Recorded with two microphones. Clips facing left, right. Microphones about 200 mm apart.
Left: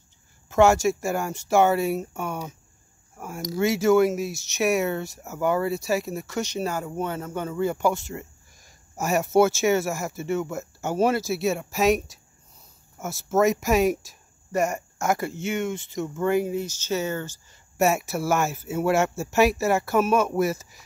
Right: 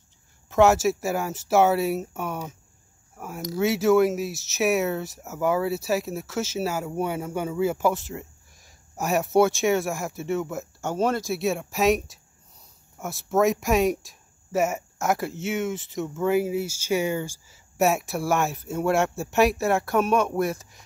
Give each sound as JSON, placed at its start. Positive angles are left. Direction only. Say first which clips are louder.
{"t": 0.5, "sound": "speech", "louder": "even", "side_deg": 0}
{"t": 17.7, "sound": "speech", "louder": "even", "side_deg": 0}